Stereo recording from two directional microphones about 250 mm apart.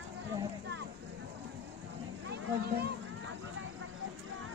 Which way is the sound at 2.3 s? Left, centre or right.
Right.